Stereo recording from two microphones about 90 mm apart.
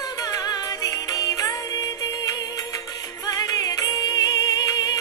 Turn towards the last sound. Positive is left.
turn(degrees=45)  # may be behind; listen again after turning